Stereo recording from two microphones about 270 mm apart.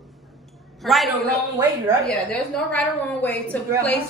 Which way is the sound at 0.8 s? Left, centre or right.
Centre.